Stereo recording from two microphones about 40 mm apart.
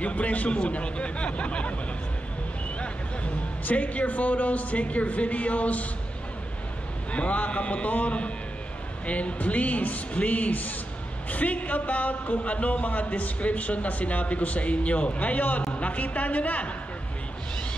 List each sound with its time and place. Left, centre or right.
0.0 s a man's voice: left
3.6 s speech: left
7.1 s speech: left